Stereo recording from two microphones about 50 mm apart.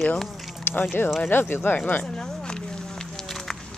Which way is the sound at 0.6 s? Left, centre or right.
Left.